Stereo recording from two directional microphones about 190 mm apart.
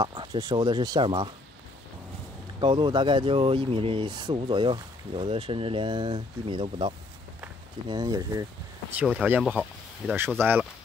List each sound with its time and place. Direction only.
0.0 s speech: 25° right (ahead or behind)
2.6 s speech: 25° right (ahead or behind)
7.9 s speech: 20° right (ahead or behind)
8.9 s speech: 5° right (ahead or behind)